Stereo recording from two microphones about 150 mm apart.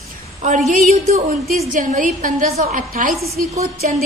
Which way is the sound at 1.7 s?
60° right (ahead or behind).